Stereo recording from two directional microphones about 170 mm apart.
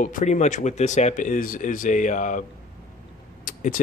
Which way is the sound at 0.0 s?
45° left (ahead or behind).